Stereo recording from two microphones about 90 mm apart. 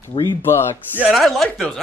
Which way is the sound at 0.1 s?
60° left (ahead or behind).